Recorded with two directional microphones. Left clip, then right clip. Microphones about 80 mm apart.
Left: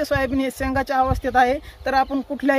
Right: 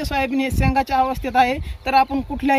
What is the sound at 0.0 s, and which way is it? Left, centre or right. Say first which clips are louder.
Speech: even; left.